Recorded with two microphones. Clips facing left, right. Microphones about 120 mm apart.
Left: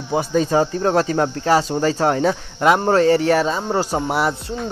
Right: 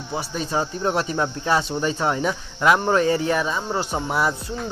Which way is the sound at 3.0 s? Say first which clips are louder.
Left 5 dB; 70° left (ahead or behind).